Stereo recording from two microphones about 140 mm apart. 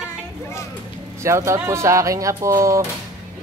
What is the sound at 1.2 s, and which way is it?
Speech, 20° right (ahead or behind).